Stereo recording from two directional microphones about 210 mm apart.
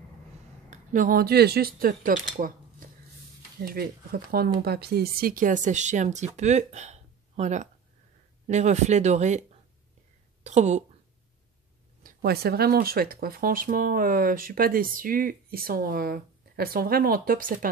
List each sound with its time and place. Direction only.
0.7 s speech: 40° right (ahead or behind)
3.6 s speech: 45° right (ahead or behind)
12.0 s speech: 45° right (ahead or behind)